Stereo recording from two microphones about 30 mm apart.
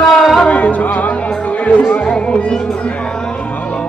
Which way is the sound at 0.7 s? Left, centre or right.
Left.